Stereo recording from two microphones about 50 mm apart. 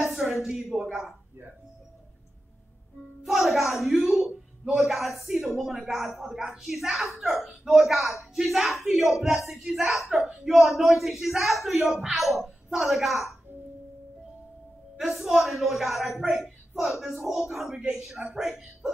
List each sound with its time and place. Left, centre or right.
0.1 s a sound: centre
0.7 s a man's voice: centre
3.3 s speech: centre
15.0 s a woman's voice: centre
18.2 s speech: centre